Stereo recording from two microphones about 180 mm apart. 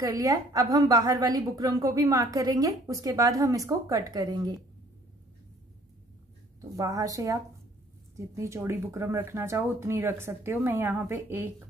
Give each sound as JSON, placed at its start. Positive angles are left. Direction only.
{"t": 0.0, "sound": "a woman's voice", "side_deg": -20}
{"t": 6.8, "sound": "a woman's voice", "side_deg": -20}
{"t": 8.4, "sound": "speech", "side_deg": -15}